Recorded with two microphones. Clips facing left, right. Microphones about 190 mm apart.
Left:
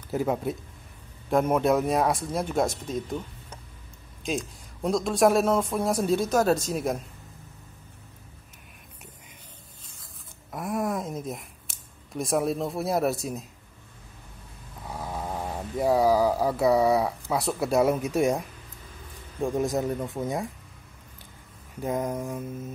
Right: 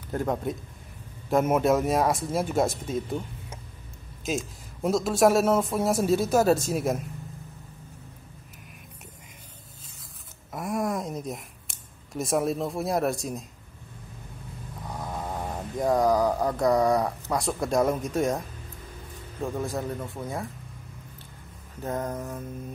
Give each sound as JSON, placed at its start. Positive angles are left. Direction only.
{"t": 0.1, "sound": "a man's voice", "side_deg": 5}
{"t": 10.5, "sound": "speech", "side_deg": 0}
{"t": 14.9, "sound": "speech", "side_deg": 5}
{"t": 19.4, "sound": "speech", "side_deg": 20}
{"t": 21.7, "sound": "mantra", "side_deg": 10}